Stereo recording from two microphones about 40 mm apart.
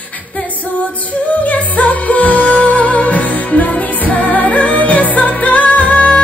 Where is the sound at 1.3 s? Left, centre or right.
Left.